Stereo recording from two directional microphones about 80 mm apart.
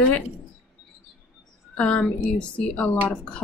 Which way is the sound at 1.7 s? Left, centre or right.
Centre.